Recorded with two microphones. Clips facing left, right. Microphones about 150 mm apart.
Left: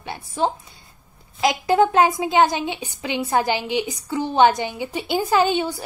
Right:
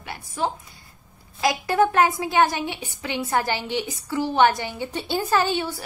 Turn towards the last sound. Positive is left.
turn(degrees=20)  # may be behind; listen again after turning